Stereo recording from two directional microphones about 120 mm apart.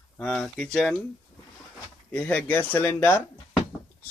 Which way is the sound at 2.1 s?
10° left (ahead or behind).